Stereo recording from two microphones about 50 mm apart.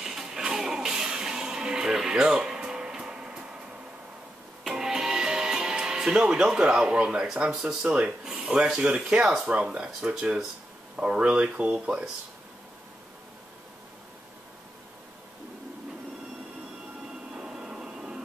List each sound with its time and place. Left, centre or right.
0.0 s music: centre
4.6 s music: centre
7.6 s speech: centre
17.3 s train: centre